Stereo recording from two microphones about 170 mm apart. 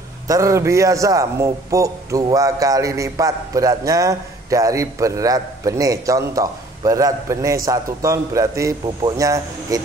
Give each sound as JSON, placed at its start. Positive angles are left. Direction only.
{"t": 0.3, "sound": "a man's voice", "side_deg": -20}